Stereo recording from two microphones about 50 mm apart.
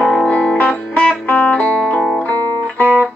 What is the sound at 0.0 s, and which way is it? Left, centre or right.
Music, left.